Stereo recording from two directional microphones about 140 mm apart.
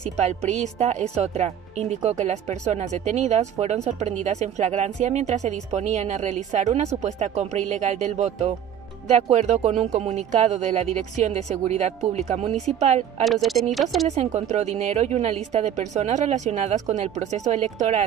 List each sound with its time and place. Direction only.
0.0 s speech: 55° right (ahead or behind)
13.2 s speech: centre (ahead or behind)
14.0 s speech: 50° right (ahead or behind)